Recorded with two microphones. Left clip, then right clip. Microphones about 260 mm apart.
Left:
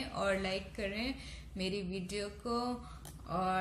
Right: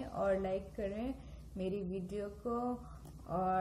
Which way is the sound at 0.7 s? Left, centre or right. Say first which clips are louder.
Left 1 dB; centre.